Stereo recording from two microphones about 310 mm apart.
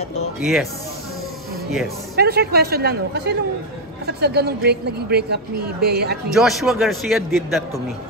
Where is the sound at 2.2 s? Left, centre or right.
Right.